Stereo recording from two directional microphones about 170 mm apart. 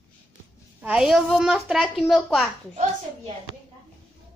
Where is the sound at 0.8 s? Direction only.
5° right (ahead or behind).